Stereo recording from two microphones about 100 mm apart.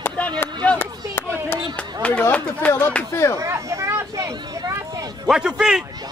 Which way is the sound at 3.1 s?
30° left (ahead or behind).